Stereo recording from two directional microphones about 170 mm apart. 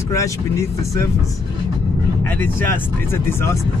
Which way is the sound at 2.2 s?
15° left (ahead or behind).